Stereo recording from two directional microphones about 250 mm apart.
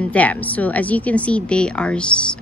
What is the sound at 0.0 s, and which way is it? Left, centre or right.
Speech, centre.